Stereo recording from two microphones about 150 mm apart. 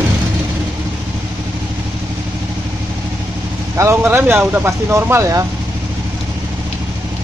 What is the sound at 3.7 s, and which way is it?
Speech, 15° right (ahead or behind).